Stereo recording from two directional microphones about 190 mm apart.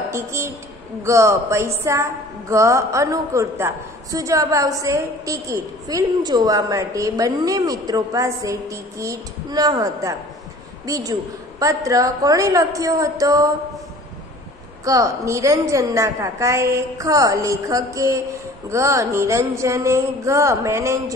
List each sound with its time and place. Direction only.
0.1 s a woman's voice: 15° right (ahead or behind)
14.9 s a woman's voice: 15° right (ahead or behind)